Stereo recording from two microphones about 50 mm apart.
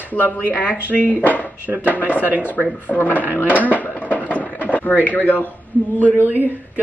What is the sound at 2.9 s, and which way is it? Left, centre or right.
Speech, left.